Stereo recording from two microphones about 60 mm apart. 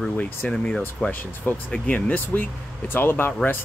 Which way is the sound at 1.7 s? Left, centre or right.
Left.